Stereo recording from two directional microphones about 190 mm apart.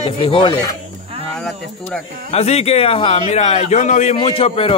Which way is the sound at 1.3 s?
Centre (ahead or behind).